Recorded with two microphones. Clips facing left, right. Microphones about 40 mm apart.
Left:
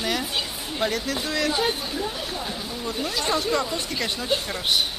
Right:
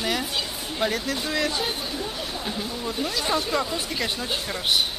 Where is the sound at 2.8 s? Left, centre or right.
Centre.